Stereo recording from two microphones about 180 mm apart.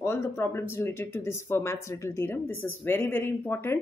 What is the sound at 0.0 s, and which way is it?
Speech, 15° left (ahead or behind).